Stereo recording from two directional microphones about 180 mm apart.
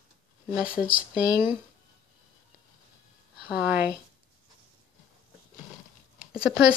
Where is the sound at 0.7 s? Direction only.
5° right (ahead or behind).